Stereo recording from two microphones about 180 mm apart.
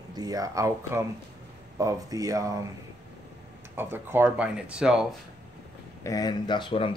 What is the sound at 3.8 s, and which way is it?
Speech, 10° right (ahead or behind).